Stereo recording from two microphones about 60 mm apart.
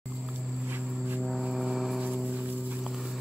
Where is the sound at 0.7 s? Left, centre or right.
Right.